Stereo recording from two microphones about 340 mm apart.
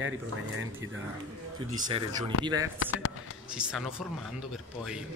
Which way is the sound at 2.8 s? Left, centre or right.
Left.